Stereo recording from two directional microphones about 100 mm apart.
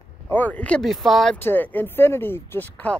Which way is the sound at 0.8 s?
Centre (ahead or behind).